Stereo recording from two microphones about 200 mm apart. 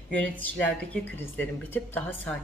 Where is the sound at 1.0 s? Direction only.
10° left (ahead or behind).